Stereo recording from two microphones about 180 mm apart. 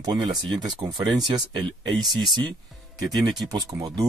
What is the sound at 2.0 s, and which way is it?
Speech, centre (ahead or behind).